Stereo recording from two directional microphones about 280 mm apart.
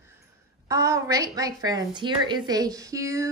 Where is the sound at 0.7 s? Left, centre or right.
Centre.